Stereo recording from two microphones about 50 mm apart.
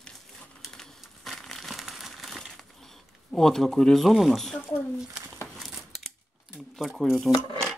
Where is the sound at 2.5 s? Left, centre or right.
Centre.